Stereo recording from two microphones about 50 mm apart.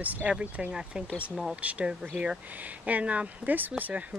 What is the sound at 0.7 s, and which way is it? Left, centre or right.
Speech, centre.